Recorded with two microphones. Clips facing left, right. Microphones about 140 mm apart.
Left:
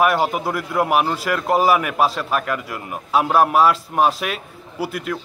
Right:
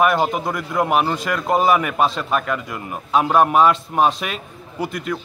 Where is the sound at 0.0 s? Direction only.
5° left (ahead or behind).